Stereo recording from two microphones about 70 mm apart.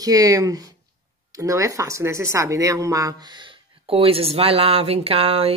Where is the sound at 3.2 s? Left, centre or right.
Right.